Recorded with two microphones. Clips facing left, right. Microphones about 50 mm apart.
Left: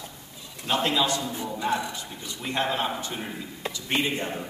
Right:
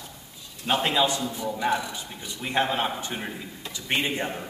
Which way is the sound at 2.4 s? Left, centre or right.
Centre.